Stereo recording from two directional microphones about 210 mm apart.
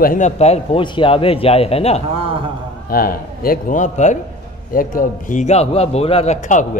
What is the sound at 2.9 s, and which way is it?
A man's voice, 45° left (ahead or behind).